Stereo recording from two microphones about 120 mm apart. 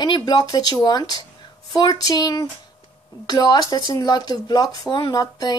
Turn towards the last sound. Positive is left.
turn(degrees=30)  # may be behind; listen again after turning